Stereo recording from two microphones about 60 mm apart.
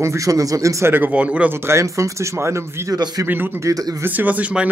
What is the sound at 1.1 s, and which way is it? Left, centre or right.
Speech, right.